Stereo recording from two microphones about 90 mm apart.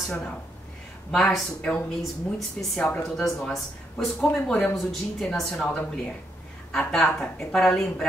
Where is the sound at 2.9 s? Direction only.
15° left (ahead or behind).